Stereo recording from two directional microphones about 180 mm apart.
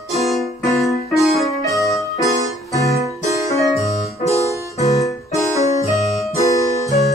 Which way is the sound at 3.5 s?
20° left (ahead or behind).